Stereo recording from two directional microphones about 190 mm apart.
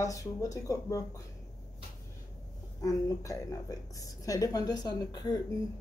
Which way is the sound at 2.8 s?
15° left (ahead or behind).